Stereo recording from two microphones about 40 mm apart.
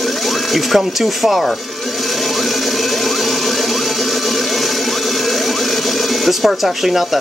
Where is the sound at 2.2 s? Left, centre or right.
Centre.